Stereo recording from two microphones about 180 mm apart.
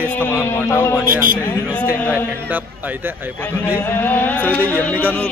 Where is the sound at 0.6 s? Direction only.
15° left (ahead or behind).